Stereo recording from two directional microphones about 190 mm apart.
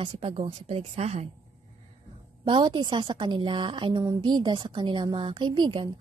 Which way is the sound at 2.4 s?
25° right (ahead or behind).